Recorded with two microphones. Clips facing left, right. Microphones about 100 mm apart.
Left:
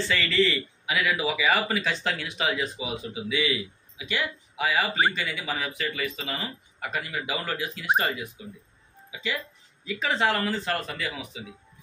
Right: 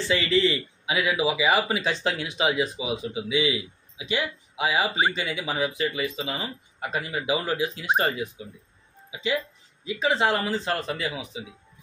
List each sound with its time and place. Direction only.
0.1 s speech: 20° right (ahead or behind)
9.8 s speech: 20° right (ahead or behind)